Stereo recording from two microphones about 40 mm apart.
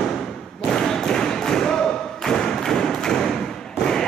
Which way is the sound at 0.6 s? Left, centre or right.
Centre.